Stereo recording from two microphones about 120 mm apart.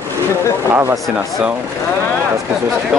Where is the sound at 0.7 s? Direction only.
20° right (ahead or behind).